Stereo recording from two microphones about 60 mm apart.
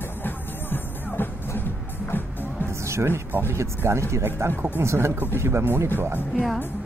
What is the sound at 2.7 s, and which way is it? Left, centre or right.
Music, right.